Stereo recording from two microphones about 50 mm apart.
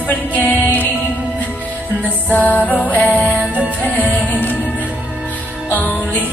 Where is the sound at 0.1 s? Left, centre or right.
Left.